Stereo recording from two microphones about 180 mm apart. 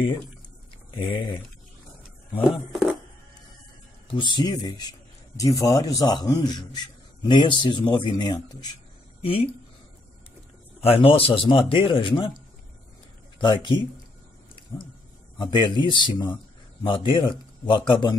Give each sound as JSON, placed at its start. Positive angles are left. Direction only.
{"t": 0.9, "sound": "a man's voice", "side_deg": 30}
{"t": 2.7, "sound": "speech", "side_deg": 0}
{"t": 4.4, "sound": "a man's voice", "side_deg": 20}
{"t": 10.8, "sound": "a man's voice", "side_deg": 30}
{"t": 13.4, "sound": "a man's voice", "side_deg": 25}
{"t": 15.3, "sound": "a man's voice", "side_deg": 25}